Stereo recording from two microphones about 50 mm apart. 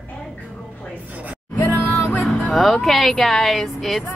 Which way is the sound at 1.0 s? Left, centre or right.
Right.